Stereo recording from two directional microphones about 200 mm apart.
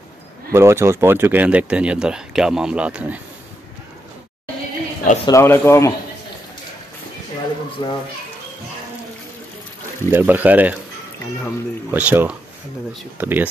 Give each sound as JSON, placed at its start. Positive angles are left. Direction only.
{"t": 0.5, "sound": "speech", "side_deg": -15}
{"t": 5.2, "sound": "speech", "side_deg": 15}
{"t": 7.8, "sound": "a child's voice", "side_deg": 20}
{"t": 10.1, "sound": "speech", "side_deg": -10}
{"t": 11.9, "sound": "speech", "side_deg": -10}